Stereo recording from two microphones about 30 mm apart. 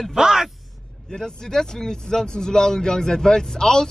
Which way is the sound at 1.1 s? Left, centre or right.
Left.